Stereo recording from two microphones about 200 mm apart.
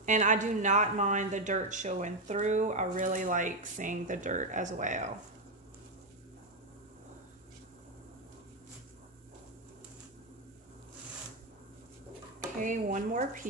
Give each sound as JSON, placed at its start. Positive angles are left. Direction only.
{"t": 0.0, "sound": "speech", "side_deg": -40}
{"t": 12.6, "sound": "speech", "side_deg": -40}